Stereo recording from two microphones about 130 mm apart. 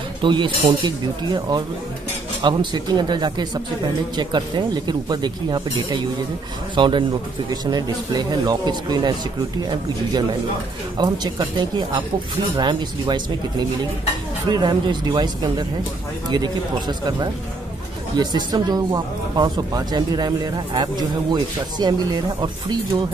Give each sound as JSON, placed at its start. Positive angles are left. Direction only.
{"t": 0.2, "sound": "speech", "side_deg": -40}
{"t": 11.0, "sound": "speech", "side_deg": -35}